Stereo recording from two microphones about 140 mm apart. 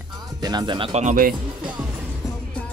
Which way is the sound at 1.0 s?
85° right.